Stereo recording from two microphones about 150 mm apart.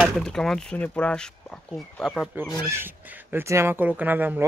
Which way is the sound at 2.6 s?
15° right (ahead or behind).